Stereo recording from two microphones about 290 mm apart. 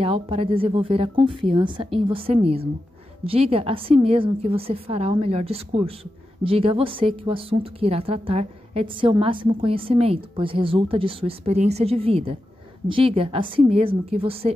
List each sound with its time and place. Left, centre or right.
0.0 s a woman's voice: centre